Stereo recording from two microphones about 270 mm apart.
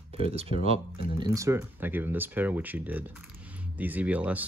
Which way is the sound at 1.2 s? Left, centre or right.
Centre.